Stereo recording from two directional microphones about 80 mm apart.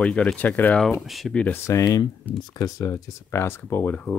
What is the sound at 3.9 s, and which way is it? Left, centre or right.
Speech, centre.